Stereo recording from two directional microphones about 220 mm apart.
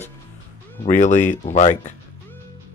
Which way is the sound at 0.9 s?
35° left (ahead or behind).